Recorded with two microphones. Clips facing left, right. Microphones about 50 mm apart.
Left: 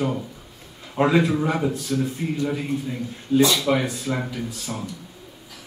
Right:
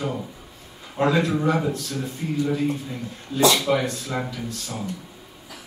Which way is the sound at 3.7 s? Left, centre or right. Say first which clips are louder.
Left 1 dB; centre.